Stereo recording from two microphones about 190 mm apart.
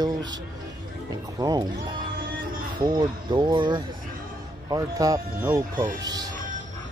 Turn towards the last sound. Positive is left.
turn(degrees=-20)  # may be behind; listen again after turning